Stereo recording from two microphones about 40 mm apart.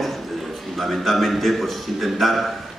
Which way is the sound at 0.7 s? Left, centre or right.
Centre.